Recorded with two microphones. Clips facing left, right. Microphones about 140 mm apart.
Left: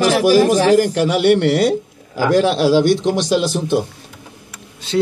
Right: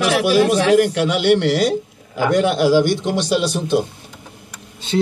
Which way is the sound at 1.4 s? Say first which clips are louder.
Left 2 dB; 60° left (ahead or behind).